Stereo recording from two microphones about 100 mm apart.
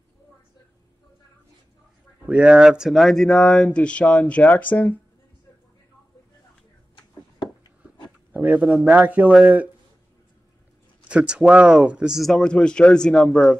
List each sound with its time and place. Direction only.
2.2 s speech: 10° right (ahead or behind); by 4.9 s 15° left (ahead or behind)
8.3 s a sound: 20° right (ahead or behind)
8.6 s speech: centre (ahead or behind)
8.9 s speech: 15° right (ahead or behind)
11.1 s speech: 10° right (ahead or behind)